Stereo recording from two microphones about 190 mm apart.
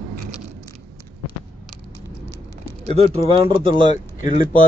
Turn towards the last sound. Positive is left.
turn(degrees=40)  # may be behind; listen again after turning